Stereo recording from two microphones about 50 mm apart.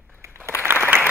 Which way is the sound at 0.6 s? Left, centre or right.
Right.